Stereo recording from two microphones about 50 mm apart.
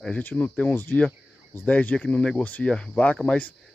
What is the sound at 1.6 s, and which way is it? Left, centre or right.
Speech, left.